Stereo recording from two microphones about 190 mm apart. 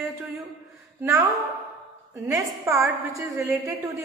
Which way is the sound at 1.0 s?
15° right (ahead or behind).